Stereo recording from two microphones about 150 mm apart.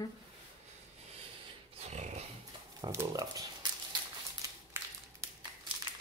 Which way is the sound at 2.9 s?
20° right (ahead or behind).